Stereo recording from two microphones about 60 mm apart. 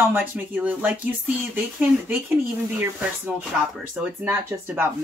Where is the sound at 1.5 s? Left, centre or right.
Right.